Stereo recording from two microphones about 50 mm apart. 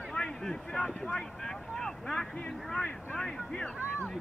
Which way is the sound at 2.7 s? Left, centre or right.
Centre.